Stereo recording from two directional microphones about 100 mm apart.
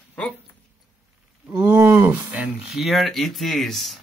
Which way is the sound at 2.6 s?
Centre (ahead or behind).